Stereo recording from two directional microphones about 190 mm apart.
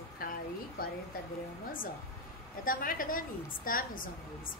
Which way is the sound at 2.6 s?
45° left (ahead or behind).